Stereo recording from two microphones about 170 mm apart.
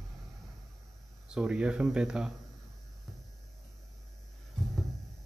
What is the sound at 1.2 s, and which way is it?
Speech, 5° right (ahead or behind).